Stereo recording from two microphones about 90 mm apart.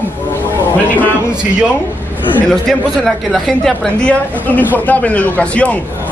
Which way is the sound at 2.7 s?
Centre (ahead or behind).